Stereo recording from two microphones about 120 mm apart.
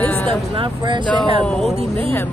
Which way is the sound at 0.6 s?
40° right (ahead or behind).